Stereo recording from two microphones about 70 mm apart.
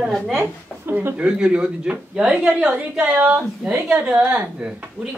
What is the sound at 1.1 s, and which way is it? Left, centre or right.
A woman's voice, centre.